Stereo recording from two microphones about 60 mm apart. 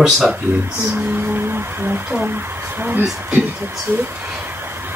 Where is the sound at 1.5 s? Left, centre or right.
Right.